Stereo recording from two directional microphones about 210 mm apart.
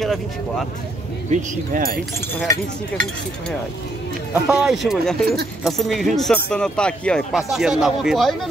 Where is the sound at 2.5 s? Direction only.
10° left (ahead or behind).